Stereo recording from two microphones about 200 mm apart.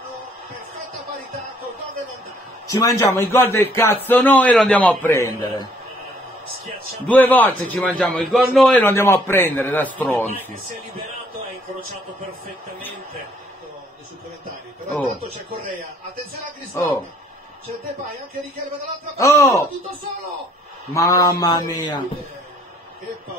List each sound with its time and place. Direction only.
2.8 s a man's voice: 15° left (ahead or behind)
14.9 s a man's voice: 10° left (ahead or behind)
19.1 s a man's voice: 15° left (ahead or behind)
20.9 s a man's voice: 15° left (ahead or behind)